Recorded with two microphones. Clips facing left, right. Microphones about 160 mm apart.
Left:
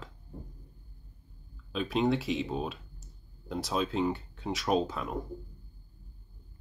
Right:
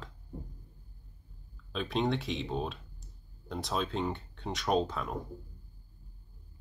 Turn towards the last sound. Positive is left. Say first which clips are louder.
# left 1 dB
turn(degrees=5)  # may be behind; listen again after turning